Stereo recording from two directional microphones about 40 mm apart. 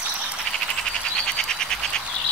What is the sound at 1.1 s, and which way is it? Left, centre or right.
Frog, centre.